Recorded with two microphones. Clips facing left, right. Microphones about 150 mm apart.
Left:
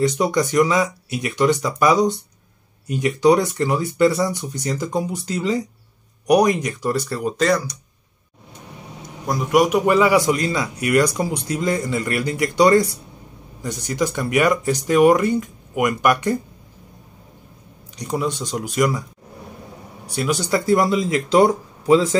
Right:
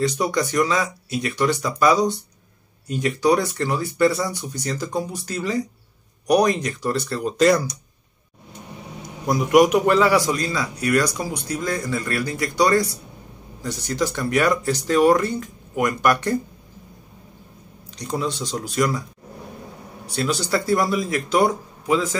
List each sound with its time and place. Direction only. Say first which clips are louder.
0.0 s speech: left 3 dB; 20° left (ahead or behind)
9.3 s a man's voice: right 2 dB; centre (ahead or behind)
17.9 s speech: left 2 dB; 15° left (ahead or behind)
20.2 s a man's voice: left 2 dB; 15° left (ahead or behind)